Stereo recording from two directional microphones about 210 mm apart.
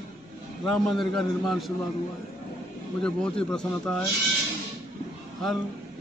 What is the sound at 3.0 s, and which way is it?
A man's voice, 5° left (ahead or behind).